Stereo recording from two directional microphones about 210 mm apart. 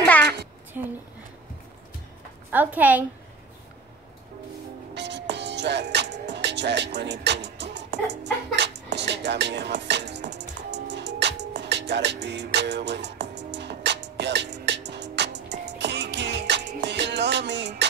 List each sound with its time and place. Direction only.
0.8 s a woman's voice: 10° right (ahead or behind)
2.5 s a woman's voice: 10° right (ahead or behind)
4.9 s music: 55° right (ahead or behind)